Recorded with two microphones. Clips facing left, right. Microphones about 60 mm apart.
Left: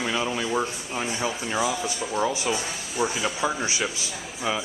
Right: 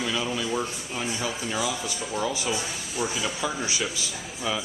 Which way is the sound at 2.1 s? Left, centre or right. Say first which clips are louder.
Left 3 dB; left.